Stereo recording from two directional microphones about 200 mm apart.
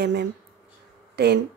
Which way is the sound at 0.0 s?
55° right (ahead or behind).